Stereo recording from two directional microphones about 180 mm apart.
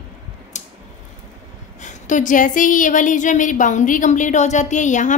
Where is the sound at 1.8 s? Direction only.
45° left (ahead or behind).